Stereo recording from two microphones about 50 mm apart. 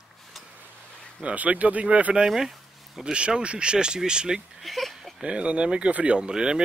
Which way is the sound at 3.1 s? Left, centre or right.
Right.